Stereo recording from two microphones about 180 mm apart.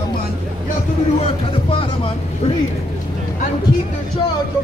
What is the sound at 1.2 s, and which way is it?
Speech, 30° left (ahead or behind).